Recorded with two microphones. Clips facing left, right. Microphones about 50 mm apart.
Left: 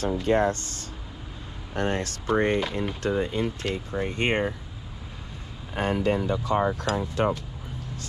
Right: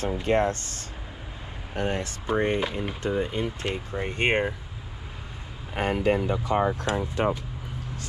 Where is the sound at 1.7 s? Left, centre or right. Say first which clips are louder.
Left 1 dB; left.